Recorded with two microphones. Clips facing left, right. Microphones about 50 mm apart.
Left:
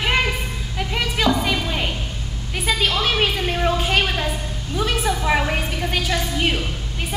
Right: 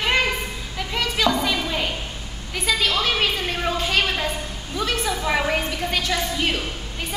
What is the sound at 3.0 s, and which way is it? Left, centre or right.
A woman's voice, centre.